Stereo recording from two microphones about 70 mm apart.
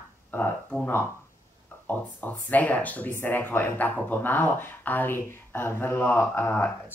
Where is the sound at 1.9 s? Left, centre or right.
Left.